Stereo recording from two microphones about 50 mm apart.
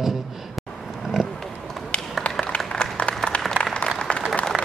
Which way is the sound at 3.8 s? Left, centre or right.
Centre.